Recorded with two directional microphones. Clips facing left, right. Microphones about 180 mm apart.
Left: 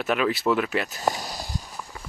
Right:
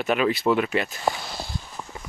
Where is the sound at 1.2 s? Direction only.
40° left (ahead or behind).